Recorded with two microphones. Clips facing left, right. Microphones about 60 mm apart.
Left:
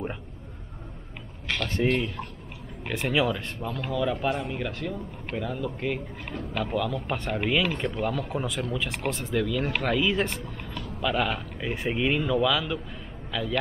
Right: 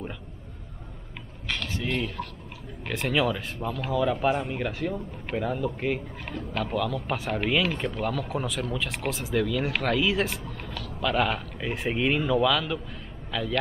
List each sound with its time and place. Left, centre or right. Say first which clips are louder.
1.8 s speech: left 9 dB; left
2.8 s speech: even; centre
6.5 s speech: even; centre